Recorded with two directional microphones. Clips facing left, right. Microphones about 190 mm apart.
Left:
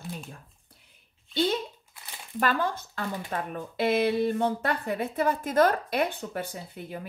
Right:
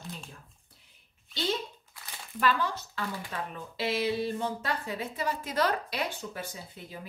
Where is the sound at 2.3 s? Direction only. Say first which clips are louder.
Left 2 dB; 50° left (ahead or behind).